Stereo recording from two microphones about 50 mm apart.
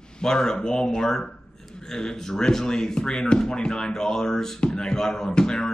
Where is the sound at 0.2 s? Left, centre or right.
Centre.